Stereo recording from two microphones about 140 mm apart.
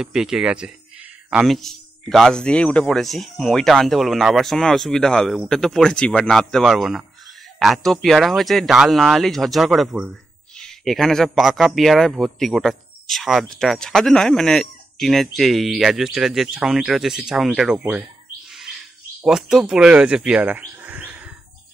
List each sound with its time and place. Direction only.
0.0 s a man's voice: 5° right (ahead or behind)
18.5 s bird: centre (ahead or behind)
19.2 s speech: 5° right (ahead or behind)